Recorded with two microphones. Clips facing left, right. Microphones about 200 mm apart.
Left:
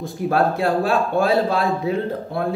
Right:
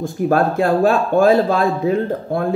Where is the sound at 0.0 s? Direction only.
45° right (ahead or behind).